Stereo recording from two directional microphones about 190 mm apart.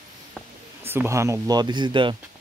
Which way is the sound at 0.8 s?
15° right (ahead or behind).